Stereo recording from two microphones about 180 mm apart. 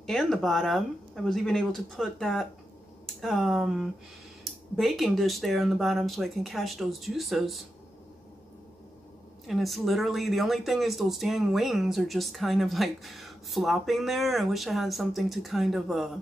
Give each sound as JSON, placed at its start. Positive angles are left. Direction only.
{"t": 0.0, "sound": "speech", "side_deg": 0}
{"t": 9.5, "sound": "speech", "side_deg": 0}